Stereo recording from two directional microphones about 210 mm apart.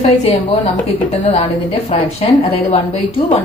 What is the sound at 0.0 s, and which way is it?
Speech, 30° left (ahead or behind).